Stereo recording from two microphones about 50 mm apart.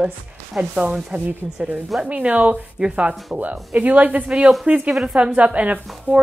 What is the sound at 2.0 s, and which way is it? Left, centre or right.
A woman's voice, right.